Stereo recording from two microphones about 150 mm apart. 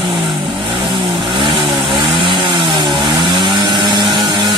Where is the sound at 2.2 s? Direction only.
35° right (ahead or behind).